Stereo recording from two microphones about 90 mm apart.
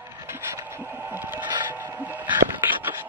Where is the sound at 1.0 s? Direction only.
20° right (ahead or behind).